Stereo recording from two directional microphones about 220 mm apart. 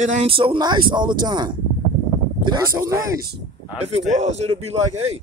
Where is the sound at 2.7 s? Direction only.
15° right (ahead or behind).